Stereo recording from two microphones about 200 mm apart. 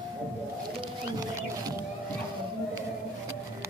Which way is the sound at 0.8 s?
20° right (ahead or behind).